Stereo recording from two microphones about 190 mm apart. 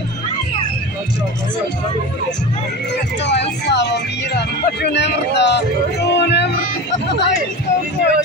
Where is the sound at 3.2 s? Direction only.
65° left (ahead or behind).